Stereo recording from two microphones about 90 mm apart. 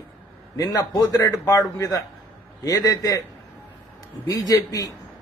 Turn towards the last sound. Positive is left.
turn(degrees=40)  # may be behind; listen again after turning